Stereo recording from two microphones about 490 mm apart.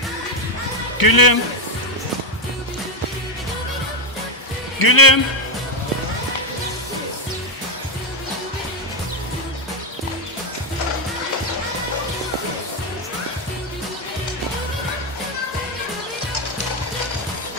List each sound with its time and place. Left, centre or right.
0.9 s speech: left
4.7 s speech: left